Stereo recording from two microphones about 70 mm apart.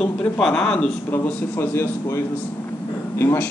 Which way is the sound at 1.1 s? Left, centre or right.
Left.